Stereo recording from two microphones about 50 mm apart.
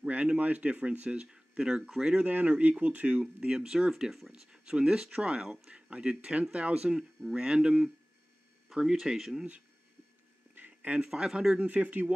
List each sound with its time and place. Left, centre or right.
0.1 s speech: right; by 2.1 s centre
2.1 s speech: right; by 4.3 s centre
4.3 s speech: centre
10.5 s a sound: right
11.1 s speech: centre
11.5 s speech: right